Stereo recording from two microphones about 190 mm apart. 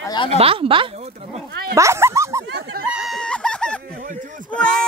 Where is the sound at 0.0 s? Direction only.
20° left (ahead or behind).